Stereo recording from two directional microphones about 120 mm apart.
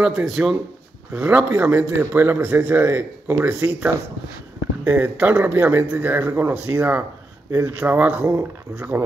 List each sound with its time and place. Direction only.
0.0 s speech: 5° right (ahead or behind)
1.2 s speech: 15° right (ahead or behind)